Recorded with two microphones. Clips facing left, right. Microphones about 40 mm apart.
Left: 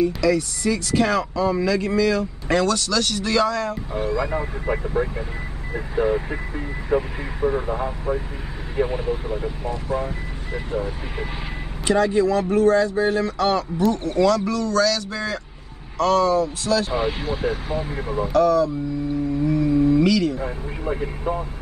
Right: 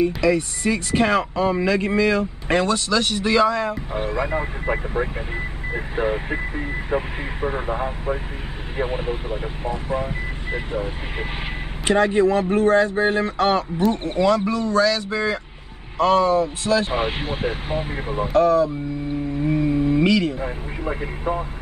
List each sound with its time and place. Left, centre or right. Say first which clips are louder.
0.0 s speech: right 1 dB; right
4.0 s speech: left 1 dB; right
4.3 s speech: right 1 dB; right
19.4 s a sound: left 1 dB; right
20.3 s speech: even; centre